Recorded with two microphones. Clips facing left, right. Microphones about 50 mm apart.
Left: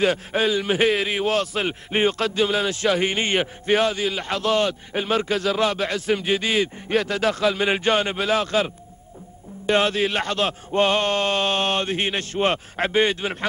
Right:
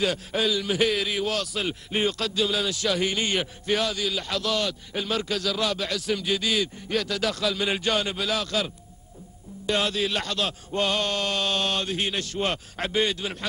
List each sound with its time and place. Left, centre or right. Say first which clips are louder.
0.0 s a man's voice: left 5 dB; left